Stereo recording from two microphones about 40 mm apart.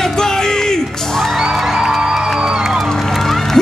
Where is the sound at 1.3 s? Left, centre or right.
Centre.